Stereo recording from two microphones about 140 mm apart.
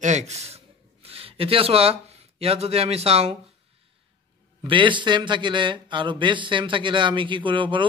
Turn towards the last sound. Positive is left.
turn(degrees=-35)  # may be behind; listen again after turning